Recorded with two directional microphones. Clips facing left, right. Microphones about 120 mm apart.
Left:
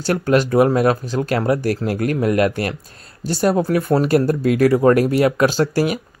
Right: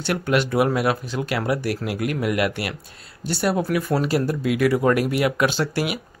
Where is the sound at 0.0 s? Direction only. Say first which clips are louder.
Left 5 dB; 40° left (ahead or behind).